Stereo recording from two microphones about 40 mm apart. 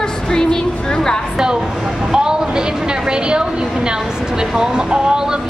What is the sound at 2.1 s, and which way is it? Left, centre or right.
Speech, centre.